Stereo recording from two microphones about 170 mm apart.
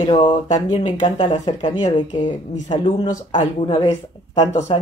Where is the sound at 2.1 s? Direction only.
45° left (ahead or behind).